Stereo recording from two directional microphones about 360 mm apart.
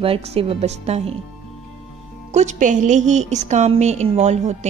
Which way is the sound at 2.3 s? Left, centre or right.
Centre.